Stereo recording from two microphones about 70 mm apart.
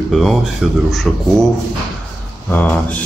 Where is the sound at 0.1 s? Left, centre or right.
Centre.